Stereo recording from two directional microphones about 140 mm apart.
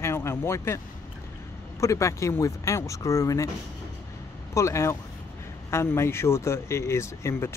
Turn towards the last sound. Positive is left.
turn(degrees=20)  # may be behind; listen again after turning